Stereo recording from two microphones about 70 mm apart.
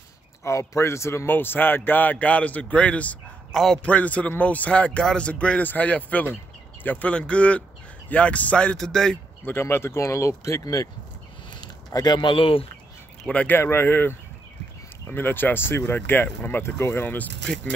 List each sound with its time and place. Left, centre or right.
0.4 s speech: left; by 3.2 s centre
3.5 s a man's voice: centre
3.8 s speech: left
8.7 s speech: centre
9.4 s speech: left
10.6 s speech: left
11.6 s a sound: left
13.3 s speech: centre
13.6 s speech: left